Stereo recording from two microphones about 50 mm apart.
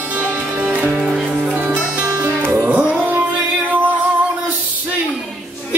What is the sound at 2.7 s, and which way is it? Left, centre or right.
Music, right.